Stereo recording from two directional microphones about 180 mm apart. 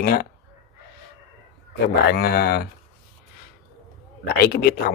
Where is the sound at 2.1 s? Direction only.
60° left (ahead or behind).